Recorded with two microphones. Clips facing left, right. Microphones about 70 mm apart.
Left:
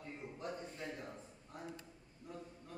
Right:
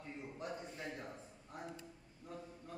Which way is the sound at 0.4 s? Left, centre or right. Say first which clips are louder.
Left 1 dB; centre.